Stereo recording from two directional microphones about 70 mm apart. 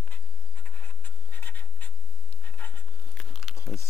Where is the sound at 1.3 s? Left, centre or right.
Left.